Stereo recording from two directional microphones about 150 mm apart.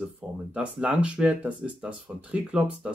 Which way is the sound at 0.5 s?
10° right (ahead or behind).